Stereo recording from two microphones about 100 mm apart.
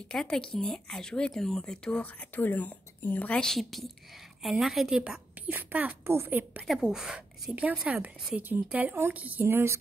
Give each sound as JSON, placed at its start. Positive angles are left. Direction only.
{"t": 0.1, "sound": "a woman's voice", "side_deg": 5}
{"t": 5.5, "sound": "a woman's voice", "side_deg": -15}
{"t": 6.7, "sound": "a woman's voice", "side_deg": -5}